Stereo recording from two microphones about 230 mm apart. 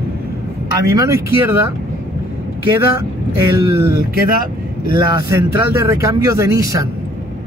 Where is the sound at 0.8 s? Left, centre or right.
Centre.